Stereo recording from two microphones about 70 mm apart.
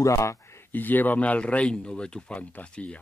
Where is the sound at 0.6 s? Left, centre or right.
Left.